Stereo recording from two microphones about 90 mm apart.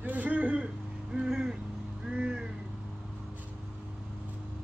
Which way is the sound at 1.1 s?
10° right (ahead or behind).